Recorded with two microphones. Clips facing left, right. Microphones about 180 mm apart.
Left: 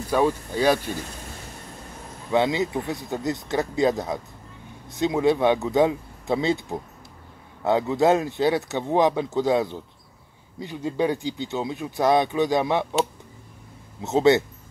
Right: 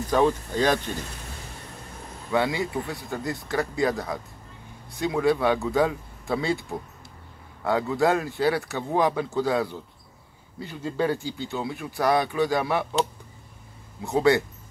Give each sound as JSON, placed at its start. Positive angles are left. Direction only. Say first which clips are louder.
{"t": 0.1, "sound": "speech", "louder": "even", "side_deg": 10}
{"t": 2.3, "sound": "speech", "louder": "left 3 dB", "side_deg": 20}
{"t": 14.0, "sound": "speech", "louder": "left 3 dB", "side_deg": 20}